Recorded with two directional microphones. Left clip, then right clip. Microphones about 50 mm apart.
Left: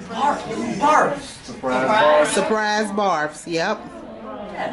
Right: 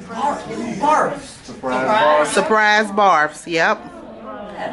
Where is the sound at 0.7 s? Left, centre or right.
Left.